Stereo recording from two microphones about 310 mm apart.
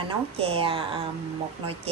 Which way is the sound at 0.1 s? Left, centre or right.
Centre.